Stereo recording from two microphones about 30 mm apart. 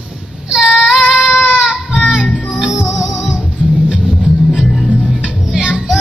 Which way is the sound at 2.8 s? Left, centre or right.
Right.